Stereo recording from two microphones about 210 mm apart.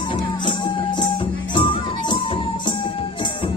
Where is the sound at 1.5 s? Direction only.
25° left (ahead or behind).